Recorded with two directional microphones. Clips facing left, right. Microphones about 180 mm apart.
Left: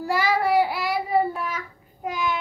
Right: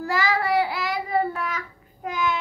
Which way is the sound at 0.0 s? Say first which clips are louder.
Left 2 dB; 10° left (ahead or behind).